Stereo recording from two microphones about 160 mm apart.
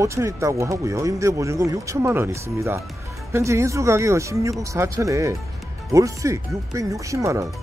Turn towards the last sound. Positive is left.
turn(degrees=-20)  # may be behind; listen again after turning